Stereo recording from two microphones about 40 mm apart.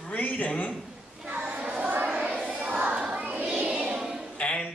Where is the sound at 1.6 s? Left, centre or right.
Right.